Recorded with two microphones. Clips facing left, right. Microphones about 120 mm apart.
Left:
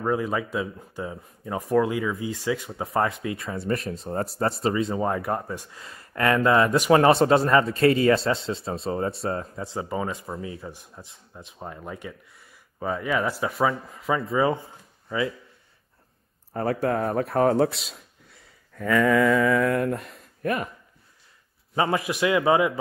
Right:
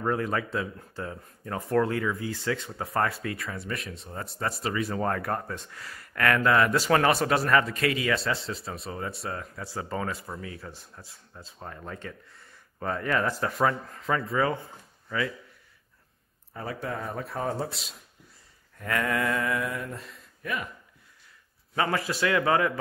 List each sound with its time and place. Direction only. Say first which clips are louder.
0.0 s speech: left 2 dB; 10° left (ahead or behind); by 4.1 s 35° left (ahead or behind)
4.1 s speech: left 9 dB; 45° left (ahead or behind)
4.5 s speech: left 3 dB; 25° left (ahead or behind); by 14.2 s 5° left (ahead or behind)
14.2 s speech: left 4 dB; 20° left (ahead or behind)
16.5 s speech: left 10 dB; 55° left (ahead or behind)
19.6 s speech: left 10 dB; 60° left (ahead or behind)
20.1 s a sound: left 7 dB; 45° left (ahead or behind)
21.7 s speech: left 3 dB; 20° left (ahead or behind)